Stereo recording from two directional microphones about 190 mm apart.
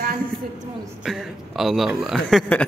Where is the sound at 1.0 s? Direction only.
Centre (ahead or behind).